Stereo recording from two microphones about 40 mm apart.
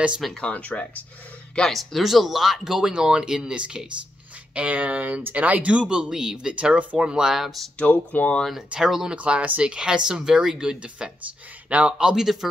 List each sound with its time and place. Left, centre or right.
0.4 s speech: left
1.6 s speech: centre
2.9 s speech: right
4.6 s speech: right; by 6.5 s centre
6.5 s speech: right
7.0 s speech: centre
7.8 s speech: left
8.7 s speech: right; by 12.4 s centre